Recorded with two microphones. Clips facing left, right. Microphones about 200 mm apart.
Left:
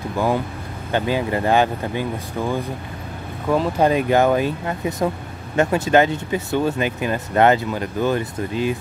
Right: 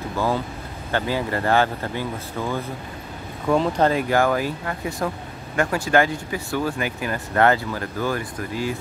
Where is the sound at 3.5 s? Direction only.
Centre (ahead or behind).